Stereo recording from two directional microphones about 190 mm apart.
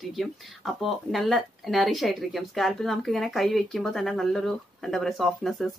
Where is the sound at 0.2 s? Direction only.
Centre (ahead or behind).